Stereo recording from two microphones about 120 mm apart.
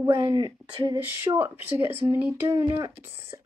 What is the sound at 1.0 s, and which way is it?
A woman's voice, 20° right (ahead or behind).